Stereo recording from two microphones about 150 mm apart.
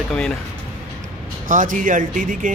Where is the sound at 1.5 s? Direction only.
60° right (ahead or behind).